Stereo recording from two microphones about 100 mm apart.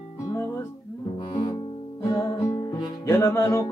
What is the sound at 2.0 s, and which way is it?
Music, 35° left (ahead or behind).